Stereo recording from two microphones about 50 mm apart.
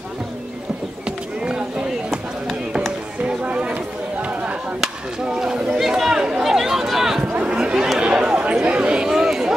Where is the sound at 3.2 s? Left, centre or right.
Right.